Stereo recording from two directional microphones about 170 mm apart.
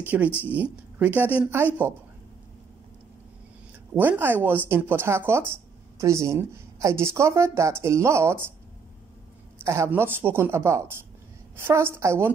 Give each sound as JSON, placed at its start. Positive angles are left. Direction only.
{"t": 0.0, "sound": "speech", "side_deg": -10}
{"t": 3.9, "sound": "speech", "side_deg": -10}
{"t": 9.6, "sound": "speech", "side_deg": -15}